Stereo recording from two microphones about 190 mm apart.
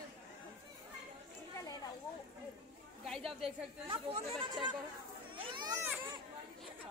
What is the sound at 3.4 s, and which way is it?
A woman's voice, 30° right (ahead or behind).